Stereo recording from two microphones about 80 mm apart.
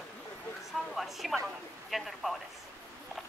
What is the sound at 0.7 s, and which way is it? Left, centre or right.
A woman's voice, centre.